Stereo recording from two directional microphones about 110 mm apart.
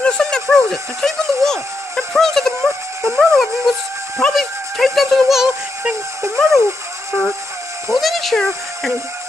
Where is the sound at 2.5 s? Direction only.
25° right (ahead or behind).